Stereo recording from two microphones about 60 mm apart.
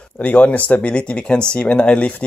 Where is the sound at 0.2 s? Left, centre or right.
Left.